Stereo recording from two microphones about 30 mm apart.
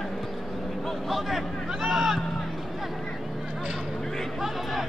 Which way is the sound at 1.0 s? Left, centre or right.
Centre.